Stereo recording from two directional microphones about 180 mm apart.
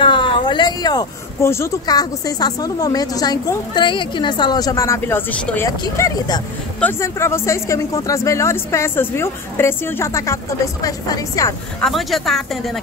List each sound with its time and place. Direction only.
0.0 s speech: 25° left (ahead or behind)
11.8 s speech: centre (ahead or behind)